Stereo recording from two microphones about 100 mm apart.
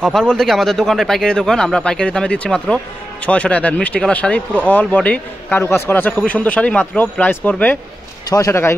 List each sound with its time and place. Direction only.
0.0 s speech: 10° left (ahead or behind)
5.6 s speech: 25° left (ahead or behind)
8.5 s a man's voice: 25° left (ahead or behind)